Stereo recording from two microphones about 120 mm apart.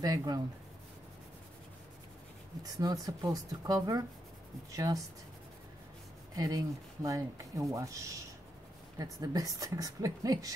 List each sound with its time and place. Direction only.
0.0 s a woman's voice: 30° right (ahead or behind)
2.6 s a woman's voice: 30° right (ahead or behind)
6.3 s a woman's voice: 30° right (ahead or behind)